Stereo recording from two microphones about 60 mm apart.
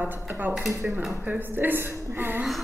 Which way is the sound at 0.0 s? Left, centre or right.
Right.